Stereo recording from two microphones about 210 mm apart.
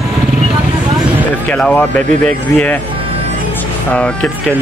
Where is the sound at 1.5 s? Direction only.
5° left (ahead or behind).